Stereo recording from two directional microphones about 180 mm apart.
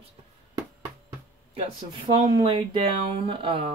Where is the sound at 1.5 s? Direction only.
30° right (ahead or behind).